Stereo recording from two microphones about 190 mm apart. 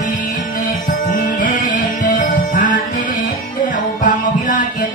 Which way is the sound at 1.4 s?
45° left (ahead or behind).